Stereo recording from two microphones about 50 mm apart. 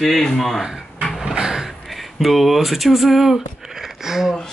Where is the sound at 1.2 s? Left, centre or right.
Centre.